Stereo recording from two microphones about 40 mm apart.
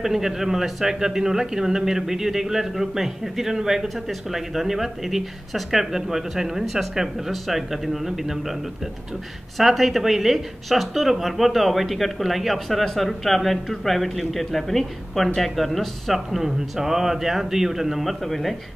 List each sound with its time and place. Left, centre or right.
0.0 s a man's voice: centre
9.6 s speech: centre